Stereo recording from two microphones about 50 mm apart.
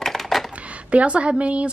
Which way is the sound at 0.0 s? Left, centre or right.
Centre.